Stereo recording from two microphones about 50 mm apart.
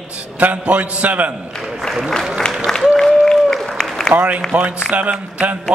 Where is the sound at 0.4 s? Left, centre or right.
Right.